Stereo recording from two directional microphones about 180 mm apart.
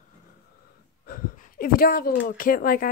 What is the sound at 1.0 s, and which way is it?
Speech, 50° left (ahead or behind).